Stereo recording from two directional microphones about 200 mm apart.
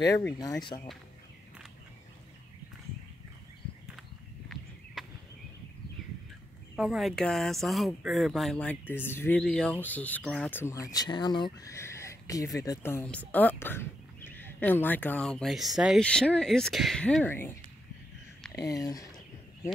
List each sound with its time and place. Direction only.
0.2 s speech: 15° left (ahead or behind)
5.0 s a sound: centre (ahead or behind)
6.8 s speech: centre (ahead or behind); by 19.0 s 15° left (ahead or behind)